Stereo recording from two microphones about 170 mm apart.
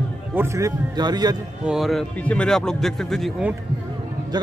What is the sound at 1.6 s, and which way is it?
Speech, centre (ahead or behind).